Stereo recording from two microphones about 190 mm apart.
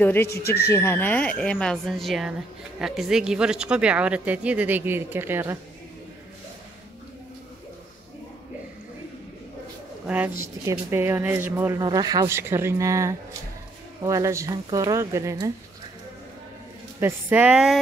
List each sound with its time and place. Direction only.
0.0 s speech: 10° left (ahead or behind); by 5.6 s 10° right (ahead or behind)
10.0 s speech: 10° right (ahead or behind)
17.0 s speech: 10° right (ahead or behind)